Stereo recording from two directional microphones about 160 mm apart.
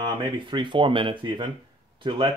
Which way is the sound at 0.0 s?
30° right (ahead or behind).